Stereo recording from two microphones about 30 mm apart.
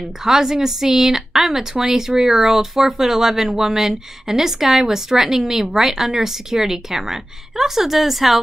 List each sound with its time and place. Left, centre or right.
0.2 s a woman's voice: centre